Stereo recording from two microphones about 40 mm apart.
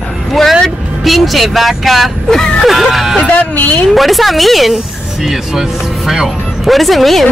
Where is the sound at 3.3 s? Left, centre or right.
Left.